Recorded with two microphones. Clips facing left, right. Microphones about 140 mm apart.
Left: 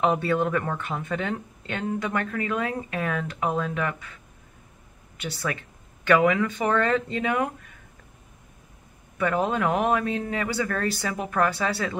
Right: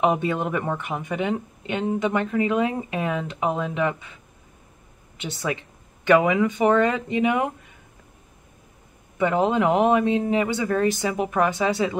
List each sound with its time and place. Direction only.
0.0 s speech: 20° right (ahead or behind)
9.2 s speech: 20° right (ahead or behind)